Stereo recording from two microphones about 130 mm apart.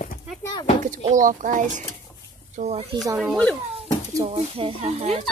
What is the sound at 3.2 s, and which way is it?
Speech, 5° left (ahead or behind).